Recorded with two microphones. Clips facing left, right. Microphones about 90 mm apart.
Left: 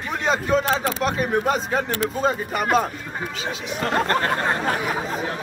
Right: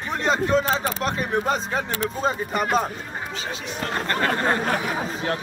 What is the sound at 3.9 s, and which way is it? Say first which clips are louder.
Speech: left 3 dB; 45° left (ahead or behind).